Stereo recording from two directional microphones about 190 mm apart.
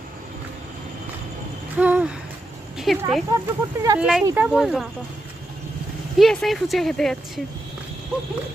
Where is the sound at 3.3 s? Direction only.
20° right (ahead or behind).